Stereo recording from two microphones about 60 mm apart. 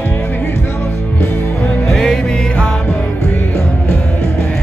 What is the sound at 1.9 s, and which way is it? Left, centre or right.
Music, centre.